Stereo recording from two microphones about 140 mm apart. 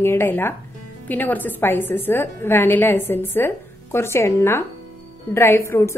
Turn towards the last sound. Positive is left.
turn(degrees=20)  # may be behind; listen again after turning